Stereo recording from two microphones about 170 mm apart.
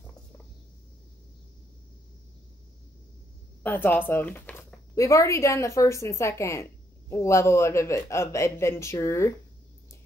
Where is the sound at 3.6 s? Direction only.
10° left (ahead or behind).